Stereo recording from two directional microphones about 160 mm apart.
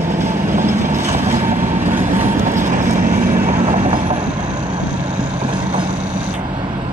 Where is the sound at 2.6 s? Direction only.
55° right (ahead or behind).